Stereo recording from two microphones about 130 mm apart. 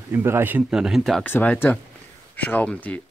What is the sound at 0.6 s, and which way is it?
Speech, 5° right (ahead or behind).